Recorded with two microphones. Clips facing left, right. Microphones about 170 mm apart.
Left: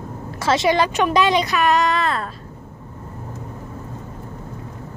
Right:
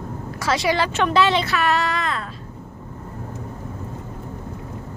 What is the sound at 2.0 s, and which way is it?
Vehicle, 40° left (ahead or behind).